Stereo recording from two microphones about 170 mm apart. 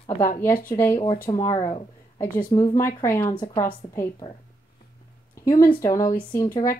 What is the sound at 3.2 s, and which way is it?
A woman's voice, 25° left (ahead or behind).